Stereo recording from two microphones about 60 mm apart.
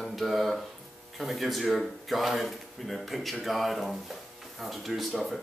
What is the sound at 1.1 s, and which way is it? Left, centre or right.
A man's voice, centre.